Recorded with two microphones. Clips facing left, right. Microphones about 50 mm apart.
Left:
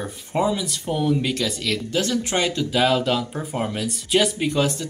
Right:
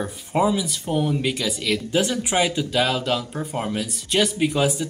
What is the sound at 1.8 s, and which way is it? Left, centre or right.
Speech, centre.